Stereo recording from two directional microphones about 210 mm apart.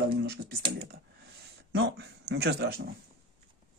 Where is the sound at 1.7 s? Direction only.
50° right (ahead or behind).